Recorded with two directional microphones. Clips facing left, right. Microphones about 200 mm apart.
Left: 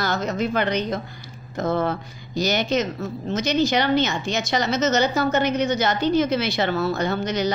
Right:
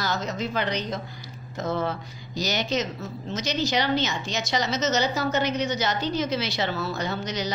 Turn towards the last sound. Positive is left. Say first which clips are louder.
# left 6 dB
turn(degrees=55)  # may be behind; listen again after turning